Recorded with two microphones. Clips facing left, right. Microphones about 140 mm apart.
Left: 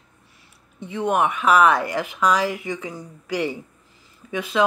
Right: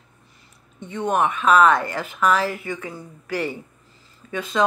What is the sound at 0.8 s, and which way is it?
Speech, 10° left (ahead or behind).